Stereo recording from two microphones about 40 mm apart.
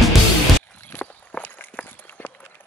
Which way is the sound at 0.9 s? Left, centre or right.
Left.